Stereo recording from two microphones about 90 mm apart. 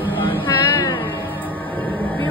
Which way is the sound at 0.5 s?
35° left (ahead or behind).